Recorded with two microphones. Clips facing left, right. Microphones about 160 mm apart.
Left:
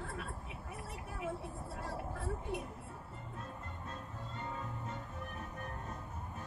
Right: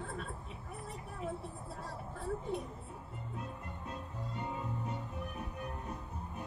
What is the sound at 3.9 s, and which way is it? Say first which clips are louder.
Music: right 3 dB; 15° right (ahead or behind).